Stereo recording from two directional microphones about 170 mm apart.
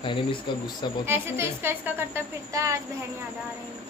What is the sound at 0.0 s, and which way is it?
Speech, 30° left (ahead or behind).